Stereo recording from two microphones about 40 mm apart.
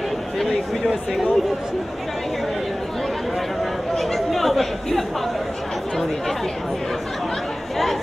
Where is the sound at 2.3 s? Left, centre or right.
Centre.